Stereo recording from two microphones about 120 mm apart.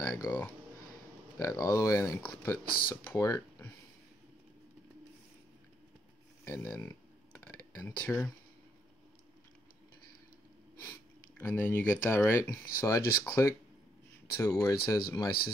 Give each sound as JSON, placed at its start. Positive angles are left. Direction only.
{"t": 0.3, "sound": "speech", "side_deg": 20}
{"t": 1.4, "sound": "speech", "side_deg": 30}
{"t": 6.4, "sound": "speech", "side_deg": 25}
{"t": 7.3, "sound": "a sound", "side_deg": 20}
{"t": 10.8, "sound": "speech", "side_deg": 15}